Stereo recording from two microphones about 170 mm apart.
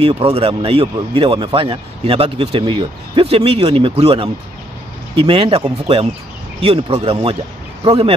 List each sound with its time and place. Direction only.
0.0 s a man's voice: 35° right (ahead or behind)